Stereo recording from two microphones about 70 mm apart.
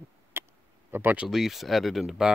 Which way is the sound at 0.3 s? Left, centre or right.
Right.